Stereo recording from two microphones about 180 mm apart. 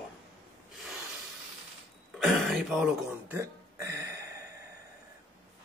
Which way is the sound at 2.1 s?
5° right (ahead or behind).